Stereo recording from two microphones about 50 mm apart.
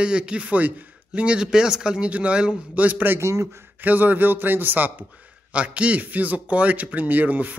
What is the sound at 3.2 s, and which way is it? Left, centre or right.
Speech, right.